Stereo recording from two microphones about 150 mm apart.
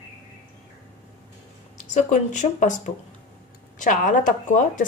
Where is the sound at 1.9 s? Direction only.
55° left (ahead or behind).